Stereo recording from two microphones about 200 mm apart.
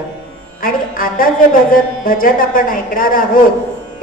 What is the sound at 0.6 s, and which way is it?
A woman's voice, 45° left (ahead or behind).